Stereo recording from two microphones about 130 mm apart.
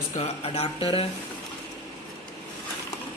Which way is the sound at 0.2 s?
70° left (ahead or behind).